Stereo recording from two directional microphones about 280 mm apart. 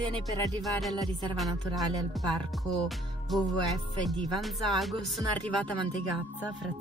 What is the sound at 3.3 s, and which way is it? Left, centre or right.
Speech, centre.